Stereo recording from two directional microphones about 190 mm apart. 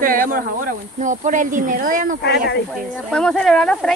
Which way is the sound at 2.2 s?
65° left (ahead or behind).